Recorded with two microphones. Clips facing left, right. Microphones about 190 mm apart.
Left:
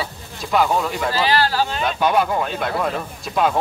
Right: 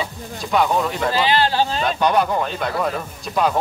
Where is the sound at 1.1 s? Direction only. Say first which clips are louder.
Right 1 dB; 20° right (ahead or behind).